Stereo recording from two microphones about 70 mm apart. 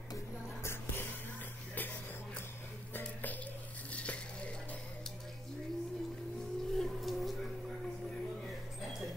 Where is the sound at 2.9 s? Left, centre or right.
Left.